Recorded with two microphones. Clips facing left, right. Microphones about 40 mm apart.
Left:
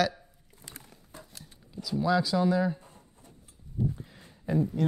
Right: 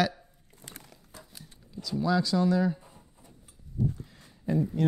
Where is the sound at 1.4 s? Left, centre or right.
Centre.